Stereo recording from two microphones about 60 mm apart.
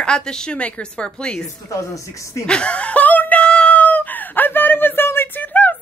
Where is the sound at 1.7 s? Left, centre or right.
Left.